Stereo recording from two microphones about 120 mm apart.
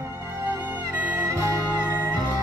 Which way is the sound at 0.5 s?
15° right (ahead or behind).